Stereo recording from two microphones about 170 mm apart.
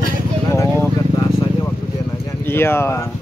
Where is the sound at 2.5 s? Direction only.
15° left (ahead or behind).